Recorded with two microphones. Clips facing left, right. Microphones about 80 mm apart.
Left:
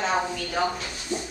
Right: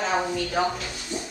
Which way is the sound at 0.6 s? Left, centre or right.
Centre.